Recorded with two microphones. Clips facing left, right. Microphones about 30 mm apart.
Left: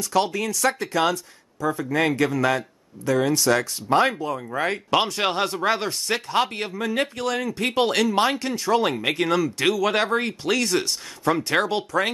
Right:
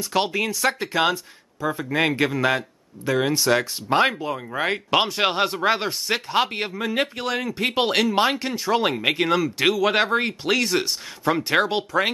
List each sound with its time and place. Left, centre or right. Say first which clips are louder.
0.0 s speech: even; right